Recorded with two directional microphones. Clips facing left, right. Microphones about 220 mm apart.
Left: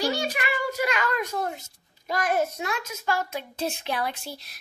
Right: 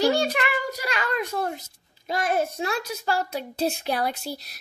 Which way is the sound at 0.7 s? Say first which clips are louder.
Left 2 dB; 35° right (ahead or behind).